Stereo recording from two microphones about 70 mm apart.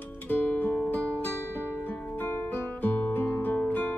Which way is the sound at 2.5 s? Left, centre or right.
Left.